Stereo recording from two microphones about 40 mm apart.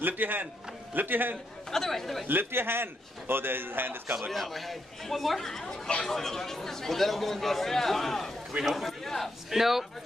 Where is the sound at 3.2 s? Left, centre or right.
Right.